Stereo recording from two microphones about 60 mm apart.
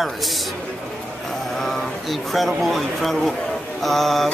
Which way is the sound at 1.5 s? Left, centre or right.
Centre.